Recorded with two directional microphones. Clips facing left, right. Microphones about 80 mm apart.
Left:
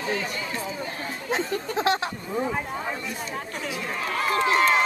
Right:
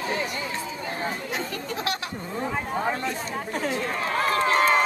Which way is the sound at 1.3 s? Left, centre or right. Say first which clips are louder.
Left 4 dB; left.